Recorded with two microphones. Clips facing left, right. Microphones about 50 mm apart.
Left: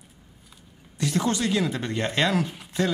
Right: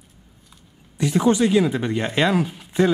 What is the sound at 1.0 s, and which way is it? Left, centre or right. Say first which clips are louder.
Speech: right 7 dB; centre.